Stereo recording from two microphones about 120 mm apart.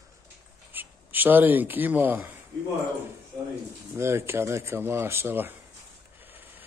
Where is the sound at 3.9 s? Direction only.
20° right (ahead or behind).